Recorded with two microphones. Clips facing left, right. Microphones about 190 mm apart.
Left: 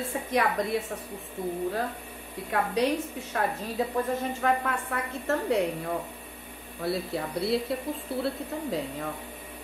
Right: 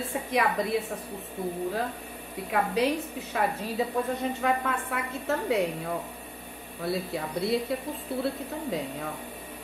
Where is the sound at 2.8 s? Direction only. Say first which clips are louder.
Even; centre (ahead or behind).